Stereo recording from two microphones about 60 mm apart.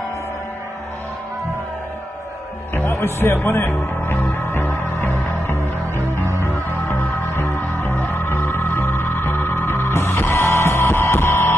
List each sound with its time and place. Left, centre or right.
2.9 s speech: left
4.2 s music: left
7.2 s music: left